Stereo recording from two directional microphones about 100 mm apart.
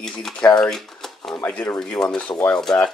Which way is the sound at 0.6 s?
5° left (ahead or behind).